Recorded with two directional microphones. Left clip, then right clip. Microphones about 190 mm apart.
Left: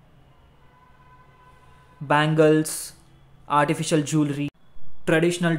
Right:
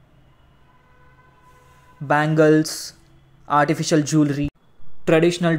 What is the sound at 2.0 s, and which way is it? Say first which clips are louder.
Speech: right 2 dB; 15° right (ahead or behind).